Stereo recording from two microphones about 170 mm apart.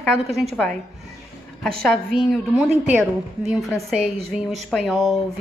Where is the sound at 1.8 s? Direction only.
Centre (ahead or behind).